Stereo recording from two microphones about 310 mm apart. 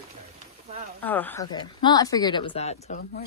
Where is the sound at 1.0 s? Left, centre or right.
Centre; by 3.2 s left.